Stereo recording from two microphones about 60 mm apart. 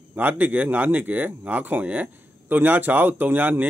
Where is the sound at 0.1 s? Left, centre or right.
Right.